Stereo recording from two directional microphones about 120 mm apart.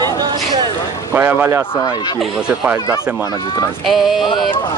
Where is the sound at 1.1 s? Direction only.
15° right (ahead or behind).